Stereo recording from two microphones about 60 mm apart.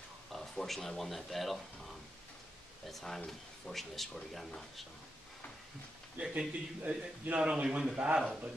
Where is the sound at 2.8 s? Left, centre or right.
Centre.